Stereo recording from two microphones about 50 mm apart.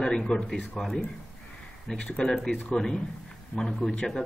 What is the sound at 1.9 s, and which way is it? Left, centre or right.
Speech, left.